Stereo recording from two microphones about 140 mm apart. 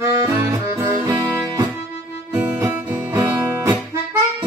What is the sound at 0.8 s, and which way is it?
Music, 20° right (ahead or behind).